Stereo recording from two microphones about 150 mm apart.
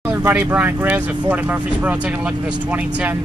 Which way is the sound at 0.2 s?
10° right (ahead or behind).